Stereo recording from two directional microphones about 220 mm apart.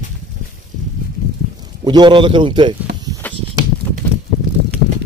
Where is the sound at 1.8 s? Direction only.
20° right (ahead or behind).